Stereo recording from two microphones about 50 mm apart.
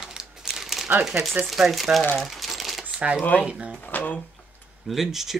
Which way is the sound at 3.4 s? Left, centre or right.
Centre.